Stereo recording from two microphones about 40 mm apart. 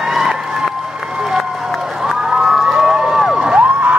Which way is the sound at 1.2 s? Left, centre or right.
Centre.